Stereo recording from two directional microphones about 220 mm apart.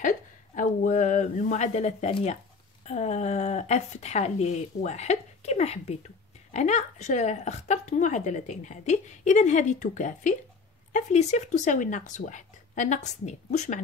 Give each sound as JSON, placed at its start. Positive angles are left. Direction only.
{"t": 0.6, "sound": "a woman's voice", "side_deg": 35}